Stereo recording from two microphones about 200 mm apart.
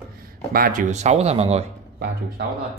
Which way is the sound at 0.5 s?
45° right (ahead or behind).